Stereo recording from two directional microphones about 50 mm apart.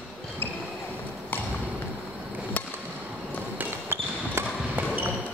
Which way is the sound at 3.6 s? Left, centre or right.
Right.